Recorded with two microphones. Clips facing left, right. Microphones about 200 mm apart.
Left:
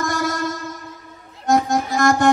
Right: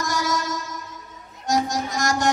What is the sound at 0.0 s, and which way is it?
Music, 55° left (ahead or behind).